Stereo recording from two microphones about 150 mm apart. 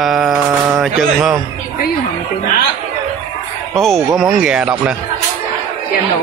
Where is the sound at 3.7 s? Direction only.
Centre (ahead or behind).